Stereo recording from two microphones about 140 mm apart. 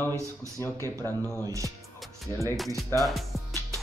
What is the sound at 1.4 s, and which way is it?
Speech, 25° right (ahead or behind).